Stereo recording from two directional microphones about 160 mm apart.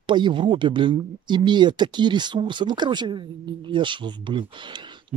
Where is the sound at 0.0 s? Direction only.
30° right (ahead or behind).